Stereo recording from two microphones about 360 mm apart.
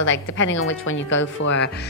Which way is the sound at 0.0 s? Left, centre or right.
Left.